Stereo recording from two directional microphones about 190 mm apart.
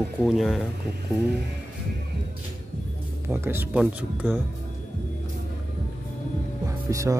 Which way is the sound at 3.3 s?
10° right (ahead or behind).